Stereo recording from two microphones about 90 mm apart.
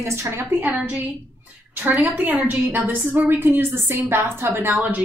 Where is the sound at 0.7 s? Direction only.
10° right (ahead or behind).